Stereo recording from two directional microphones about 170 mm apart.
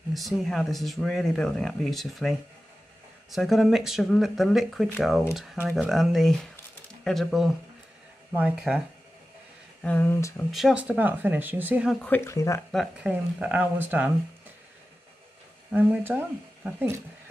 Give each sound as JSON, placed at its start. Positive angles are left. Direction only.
{"t": 0.1, "sound": "speech", "side_deg": 0}
{"t": 9.8, "sound": "speech", "side_deg": 10}
{"t": 10.5, "sound": "speech", "side_deg": -5}
{"t": 12.0, "sound": "speech", "side_deg": 15}
{"t": 12.7, "sound": "speech", "side_deg": -5}
{"t": 15.7, "sound": "speech", "side_deg": -10}